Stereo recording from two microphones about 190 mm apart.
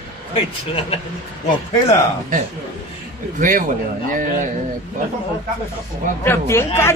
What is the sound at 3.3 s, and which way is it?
Speech, 45° right (ahead or behind).